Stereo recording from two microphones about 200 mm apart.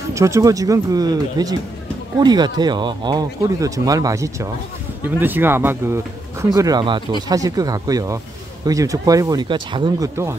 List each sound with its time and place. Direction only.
0.1 s speech: 15° right (ahead or behind)